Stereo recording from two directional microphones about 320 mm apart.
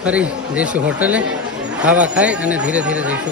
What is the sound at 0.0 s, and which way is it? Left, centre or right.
A man's voice, centre.